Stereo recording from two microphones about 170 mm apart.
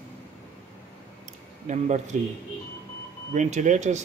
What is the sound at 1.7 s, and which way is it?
Speech, 45° right (ahead or behind).